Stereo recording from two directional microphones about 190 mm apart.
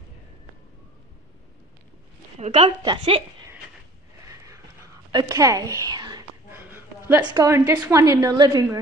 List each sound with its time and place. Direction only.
2.3 s a woman's voice: 35° right (ahead or behind)
4.3 s vehicle: 15° right (ahead or behind)
5.1 s a sound: 20° right (ahead or behind)
6.6 s a woman's voice: 10° right (ahead or behind)